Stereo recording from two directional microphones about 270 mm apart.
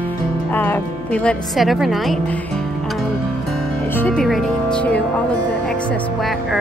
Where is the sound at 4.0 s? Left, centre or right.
Centre.